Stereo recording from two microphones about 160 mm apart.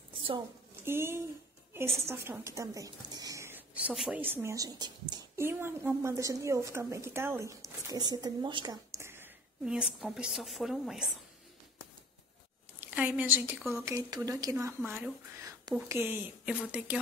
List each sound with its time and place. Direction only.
0.8 s a woman's voice: 15° right (ahead or behind)
8.9 s a woman's voice: 15° right (ahead or behind)
12.8 s a woman's voice: 10° right (ahead or behind)